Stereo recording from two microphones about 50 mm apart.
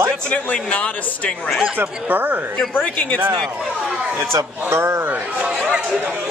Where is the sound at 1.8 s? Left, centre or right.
Right.